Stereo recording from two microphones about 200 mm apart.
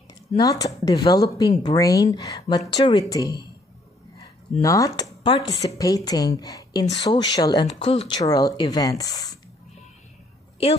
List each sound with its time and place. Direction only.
0.4 s a woman's voice: 20° left (ahead or behind)
4.6 s a woman's voice: 15° left (ahead or behind)